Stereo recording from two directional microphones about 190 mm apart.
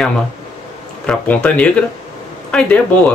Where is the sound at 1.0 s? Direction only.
5° left (ahead or behind).